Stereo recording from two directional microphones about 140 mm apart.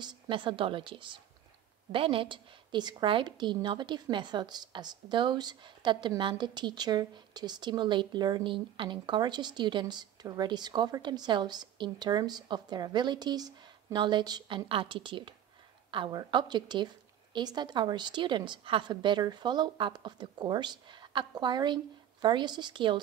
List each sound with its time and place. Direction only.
0.0 s a woman's voice: 35° right (ahead or behind)